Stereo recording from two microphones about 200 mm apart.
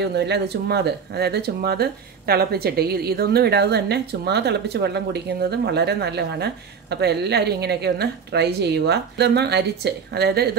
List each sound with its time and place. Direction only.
0.0 s speech: 55° right (ahead or behind)